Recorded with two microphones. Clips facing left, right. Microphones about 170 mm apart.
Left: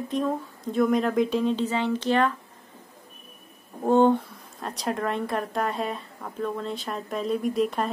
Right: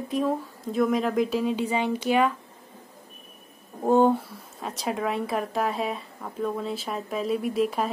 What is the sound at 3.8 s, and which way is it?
Speech, 5° right (ahead or behind).